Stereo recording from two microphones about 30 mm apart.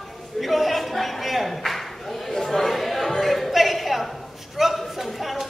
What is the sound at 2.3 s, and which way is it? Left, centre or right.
Chatter, centre.